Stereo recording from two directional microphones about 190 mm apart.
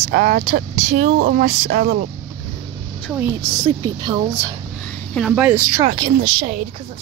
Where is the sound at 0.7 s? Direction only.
35° right (ahead or behind).